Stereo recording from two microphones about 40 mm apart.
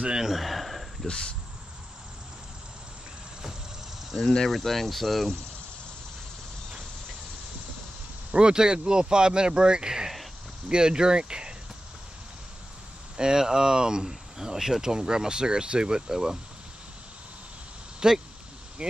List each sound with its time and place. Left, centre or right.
0.1 s speech: centre
0.4 s a sound: centre
1.0 s speech: left
4.2 s speech: centre
8.3 s speech: right
13.2 s speech: centre
18.0 s speech: centre